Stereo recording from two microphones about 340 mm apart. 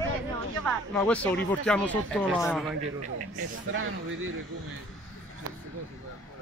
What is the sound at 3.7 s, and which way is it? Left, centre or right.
Speech, right.